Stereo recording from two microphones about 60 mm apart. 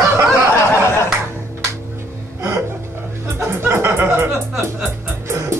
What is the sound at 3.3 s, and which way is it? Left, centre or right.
Music, right.